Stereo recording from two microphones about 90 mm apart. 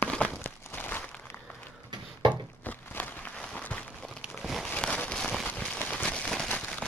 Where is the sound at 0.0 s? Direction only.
15° left (ahead or behind).